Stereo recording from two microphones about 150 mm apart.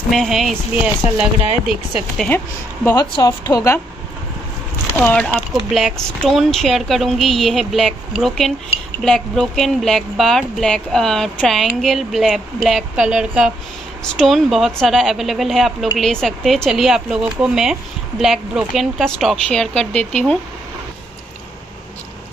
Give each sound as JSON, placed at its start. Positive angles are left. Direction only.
{"t": 0.1, "sound": "speech", "side_deg": 0}
{"t": 2.1, "sound": "a woman's voice", "side_deg": 10}
{"t": 3.0, "sound": "speech", "side_deg": 25}
{"t": 4.9, "sound": "speech", "side_deg": 10}